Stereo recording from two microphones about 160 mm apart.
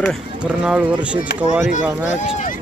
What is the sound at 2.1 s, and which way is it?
Speech, 50° left (ahead or behind).